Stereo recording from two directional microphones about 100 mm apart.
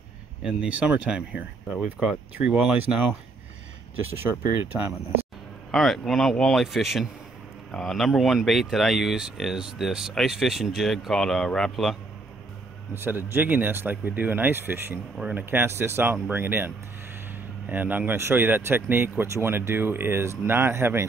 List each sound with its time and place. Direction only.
0.4 s speech: 5° right (ahead or behind)
5.7 s speech: centre (ahead or behind)
12.9 s speech: 25° right (ahead or behind)